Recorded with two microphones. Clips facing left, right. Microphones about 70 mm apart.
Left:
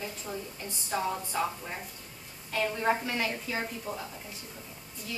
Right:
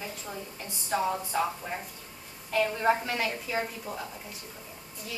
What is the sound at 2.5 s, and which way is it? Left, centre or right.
A woman's voice, centre.